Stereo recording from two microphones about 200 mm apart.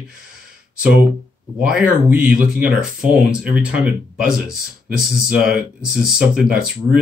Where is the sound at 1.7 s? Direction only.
5° right (ahead or behind).